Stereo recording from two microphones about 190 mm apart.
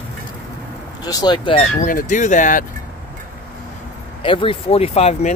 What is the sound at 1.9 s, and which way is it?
Speech, 45° left (ahead or behind).